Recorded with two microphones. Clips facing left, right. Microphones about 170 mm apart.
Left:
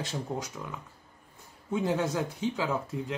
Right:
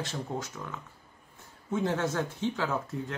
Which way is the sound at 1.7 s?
15° left (ahead or behind).